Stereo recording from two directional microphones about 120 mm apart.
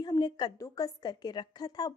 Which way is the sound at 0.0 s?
35° left (ahead or behind).